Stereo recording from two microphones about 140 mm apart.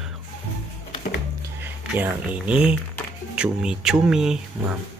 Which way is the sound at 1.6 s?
10° right (ahead or behind).